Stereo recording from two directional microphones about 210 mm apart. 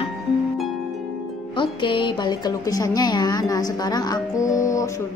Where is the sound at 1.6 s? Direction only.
25° left (ahead or behind).